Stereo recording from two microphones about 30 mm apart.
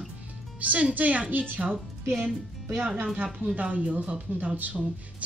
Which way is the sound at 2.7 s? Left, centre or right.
Right.